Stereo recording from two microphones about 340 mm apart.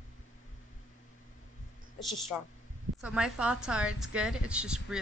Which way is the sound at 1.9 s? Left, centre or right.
Centre.